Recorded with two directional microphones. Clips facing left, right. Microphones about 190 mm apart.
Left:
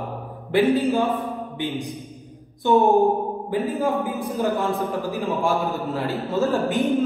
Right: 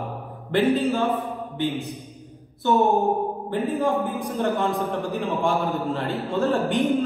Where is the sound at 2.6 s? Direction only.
15° left (ahead or behind).